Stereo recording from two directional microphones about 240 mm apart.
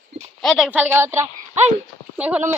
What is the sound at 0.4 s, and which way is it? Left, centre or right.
A woman's voice, centre.